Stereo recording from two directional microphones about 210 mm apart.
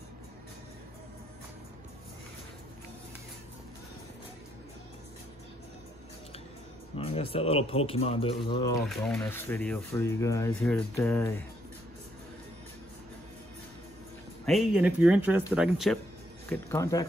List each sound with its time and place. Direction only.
7.0 s speech: 25° left (ahead or behind)
8.8 s speech: centre (ahead or behind)
14.4 s speech: centre (ahead or behind)
16.4 s speech: 10° left (ahead or behind)